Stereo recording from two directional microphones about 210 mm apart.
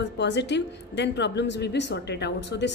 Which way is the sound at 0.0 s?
55° left (ahead or behind).